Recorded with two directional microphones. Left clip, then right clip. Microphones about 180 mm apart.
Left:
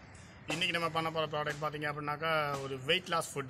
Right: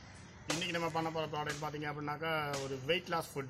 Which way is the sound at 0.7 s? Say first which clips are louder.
Left 2 dB; 25° left (ahead or behind).